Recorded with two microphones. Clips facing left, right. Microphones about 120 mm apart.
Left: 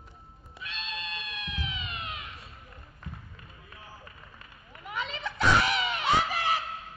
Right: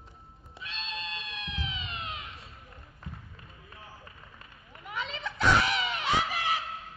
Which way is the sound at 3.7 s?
30° right (ahead or behind).